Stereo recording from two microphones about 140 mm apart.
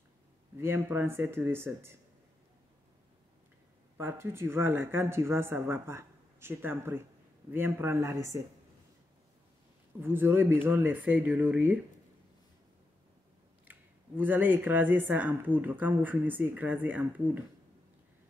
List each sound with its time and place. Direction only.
0.6 s speech: 15° right (ahead or behind)
4.0 s speech: 15° right (ahead or behind)
10.0 s speech: 15° right (ahead or behind)
13.7 s speech: 15° right (ahead or behind)